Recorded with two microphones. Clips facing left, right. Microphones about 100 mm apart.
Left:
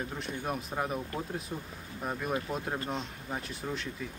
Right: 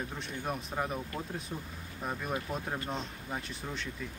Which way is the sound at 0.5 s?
5° left (ahead or behind).